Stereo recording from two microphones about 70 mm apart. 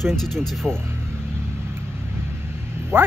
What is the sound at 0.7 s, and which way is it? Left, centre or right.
Speech, right.